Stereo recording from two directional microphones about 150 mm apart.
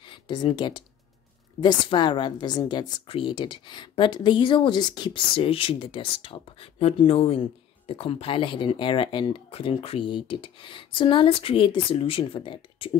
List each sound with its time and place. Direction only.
0.0 s a woman's voice: 30° left (ahead or behind)